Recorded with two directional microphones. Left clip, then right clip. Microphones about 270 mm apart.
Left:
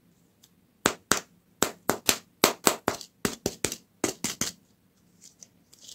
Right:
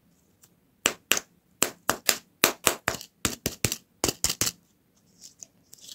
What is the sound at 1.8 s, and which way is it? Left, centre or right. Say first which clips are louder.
Clapping: right 1 dB; centre.